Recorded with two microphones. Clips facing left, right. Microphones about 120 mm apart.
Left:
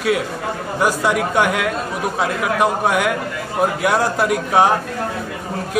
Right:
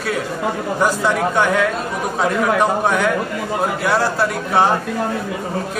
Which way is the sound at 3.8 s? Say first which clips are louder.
Right 1 dB; 15° left (ahead or behind).